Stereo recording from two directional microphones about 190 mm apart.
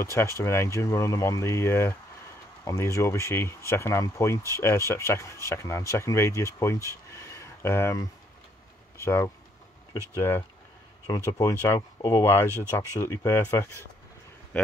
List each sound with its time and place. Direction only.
0.0 s speech: 15° left (ahead or behind)
6.9 s a sound: 15° left (ahead or behind)
9.0 s speech: 15° left (ahead or behind)